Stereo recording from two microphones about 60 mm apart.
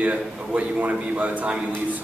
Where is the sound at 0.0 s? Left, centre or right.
Right.